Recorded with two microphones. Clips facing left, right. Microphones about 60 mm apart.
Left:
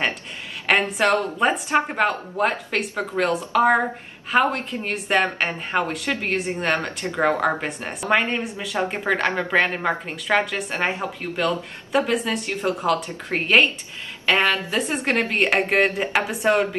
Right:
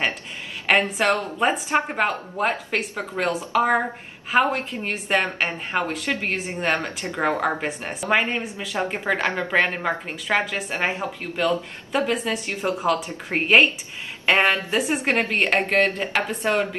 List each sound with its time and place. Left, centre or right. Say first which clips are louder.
0.7 s a sound: even; centre
1.4 s speech: even; centre
14.2 s speech: right 1 dB; right
14.7 s speech: right 1 dB; centre